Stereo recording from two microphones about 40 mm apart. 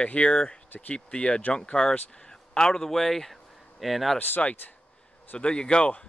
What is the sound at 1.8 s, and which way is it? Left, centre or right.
Speech, left.